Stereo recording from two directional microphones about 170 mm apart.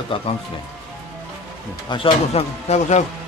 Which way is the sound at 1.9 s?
35° left (ahead or behind).